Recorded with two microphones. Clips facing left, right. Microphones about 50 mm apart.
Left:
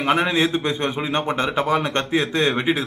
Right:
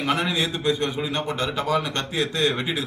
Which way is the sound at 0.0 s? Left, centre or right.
Left.